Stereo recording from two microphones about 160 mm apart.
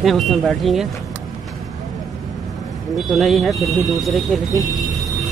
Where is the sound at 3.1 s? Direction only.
Centre (ahead or behind).